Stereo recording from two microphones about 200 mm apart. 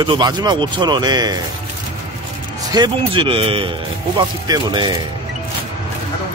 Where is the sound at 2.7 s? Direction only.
20° right (ahead or behind).